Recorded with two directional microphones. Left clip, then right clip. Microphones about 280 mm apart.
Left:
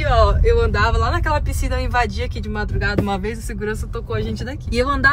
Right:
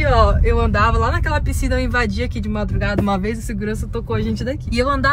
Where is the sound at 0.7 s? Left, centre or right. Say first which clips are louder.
Right 2 dB; centre.